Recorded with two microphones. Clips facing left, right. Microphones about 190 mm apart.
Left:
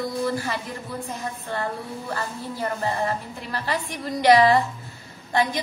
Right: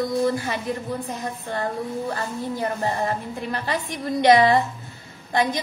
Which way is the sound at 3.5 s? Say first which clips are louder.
Even; 20° right (ahead or behind).